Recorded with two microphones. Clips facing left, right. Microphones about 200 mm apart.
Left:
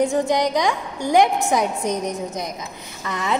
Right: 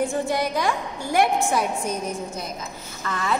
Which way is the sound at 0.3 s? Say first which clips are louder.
Left 4 dB; 20° left (ahead or behind).